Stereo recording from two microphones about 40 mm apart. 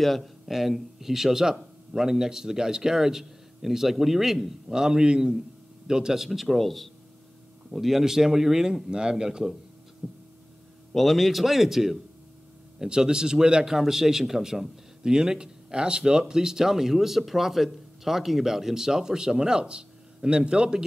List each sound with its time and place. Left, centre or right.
0.0 s a man's voice: centre
6.2 s a man's voice: centre
10.0 s a sound: centre
10.9 s a man's voice: centre; by 20.8 s right